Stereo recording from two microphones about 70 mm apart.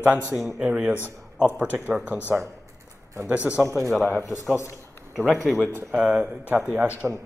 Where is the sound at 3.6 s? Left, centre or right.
Right.